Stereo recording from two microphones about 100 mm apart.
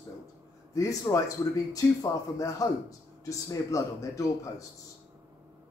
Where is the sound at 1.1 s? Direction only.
35° left (ahead or behind).